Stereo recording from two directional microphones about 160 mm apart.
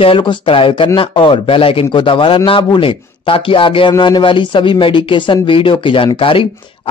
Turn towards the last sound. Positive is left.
turn(degrees=35)  # may be behind; listen again after turning